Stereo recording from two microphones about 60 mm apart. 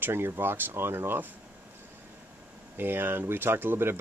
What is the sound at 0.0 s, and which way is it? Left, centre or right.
Speech, right.